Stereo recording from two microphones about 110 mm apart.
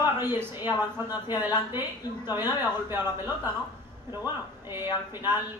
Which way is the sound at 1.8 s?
20° right (ahead or behind).